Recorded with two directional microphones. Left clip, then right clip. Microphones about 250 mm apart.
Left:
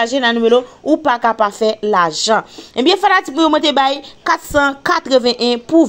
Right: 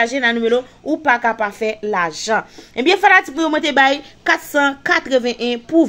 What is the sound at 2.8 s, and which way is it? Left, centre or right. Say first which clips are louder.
Speech: even; centre.